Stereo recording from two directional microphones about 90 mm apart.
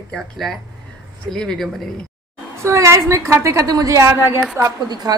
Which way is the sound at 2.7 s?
35° right (ahead or behind).